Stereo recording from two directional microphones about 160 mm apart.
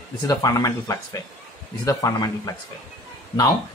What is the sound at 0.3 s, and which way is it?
Speech, 20° left (ahead or behind).